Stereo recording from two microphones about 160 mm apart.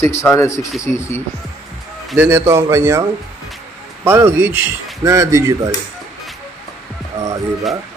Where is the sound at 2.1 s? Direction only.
15° right (ahead or behind).